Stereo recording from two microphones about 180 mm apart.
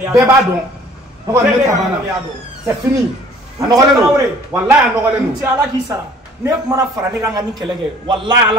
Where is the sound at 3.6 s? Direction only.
20° right (ahead or behind).